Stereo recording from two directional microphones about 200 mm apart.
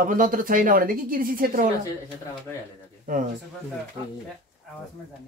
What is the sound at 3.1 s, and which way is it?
Speech, 45° right (ahead or behind).